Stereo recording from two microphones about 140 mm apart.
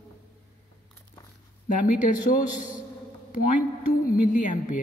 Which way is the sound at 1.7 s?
65° left (ahead or behind).